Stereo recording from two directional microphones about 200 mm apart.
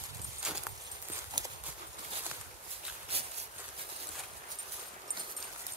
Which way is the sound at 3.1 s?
30° right (ahead or behind).